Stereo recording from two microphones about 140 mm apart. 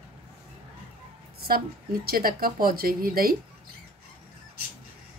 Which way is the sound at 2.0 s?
90° right.